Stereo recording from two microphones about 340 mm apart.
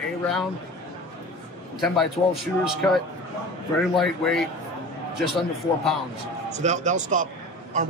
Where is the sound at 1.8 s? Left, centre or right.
Centre.